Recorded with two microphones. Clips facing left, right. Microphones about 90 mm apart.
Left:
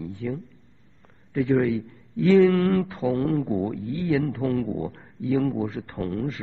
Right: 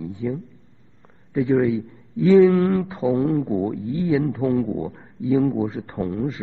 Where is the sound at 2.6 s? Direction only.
15° right (ahead or behind).